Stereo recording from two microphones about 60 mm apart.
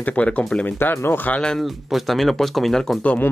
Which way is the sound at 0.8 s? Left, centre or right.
Left.